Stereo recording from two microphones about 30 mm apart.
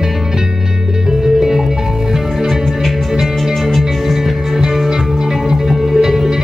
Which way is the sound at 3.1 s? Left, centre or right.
Centre.